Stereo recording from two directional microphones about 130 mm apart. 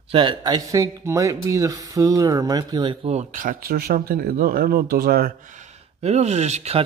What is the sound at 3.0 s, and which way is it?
Speech, 75° right (ahead or behind).